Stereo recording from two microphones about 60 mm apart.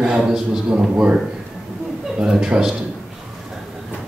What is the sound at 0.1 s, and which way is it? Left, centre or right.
A man's voice, centre.